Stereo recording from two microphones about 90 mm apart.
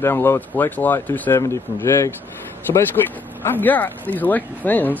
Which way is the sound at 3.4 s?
20° left (ahead or behind).